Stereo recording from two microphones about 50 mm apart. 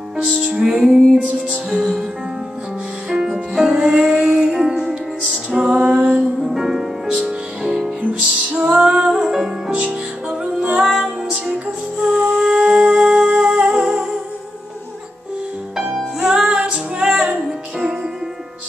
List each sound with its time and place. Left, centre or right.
0.6 s music: centre
3.1 s music: centre
6.4 s music: centre
15.7 s music: centre